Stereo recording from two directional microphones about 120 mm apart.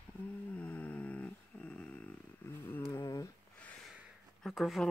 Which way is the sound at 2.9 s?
30° left (ahead or behind).